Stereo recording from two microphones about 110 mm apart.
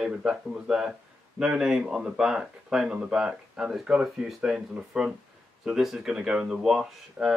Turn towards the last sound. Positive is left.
turn(degrees=-5)  # may be behind; listen again after turning